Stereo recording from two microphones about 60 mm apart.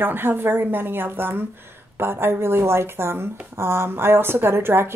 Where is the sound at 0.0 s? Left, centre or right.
Right.